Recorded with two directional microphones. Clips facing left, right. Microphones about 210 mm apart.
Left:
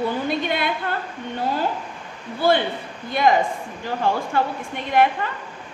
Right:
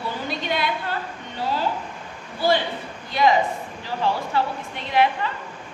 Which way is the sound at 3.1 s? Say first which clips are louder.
Left 1 dB; 50° left (ahead or behind).